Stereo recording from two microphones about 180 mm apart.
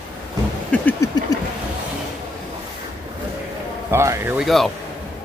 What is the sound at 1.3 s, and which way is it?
Vehicle, 20° left (ahead or behind).